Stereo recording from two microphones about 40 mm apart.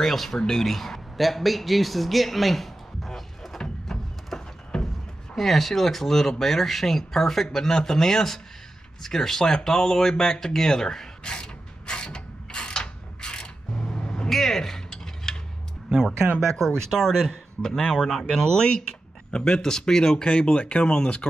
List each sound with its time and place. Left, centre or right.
0.0 s speech: centre
3.6 s a sound: centre
4.3 s a sound: centre
5.3 s speech: centre
11.3 s mechanisms: left
14.3 s cutlery: centre
16.3 s speech: centre; by 21.3 s left